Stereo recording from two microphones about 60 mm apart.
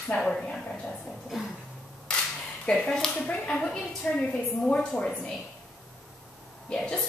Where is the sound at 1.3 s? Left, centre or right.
Centre.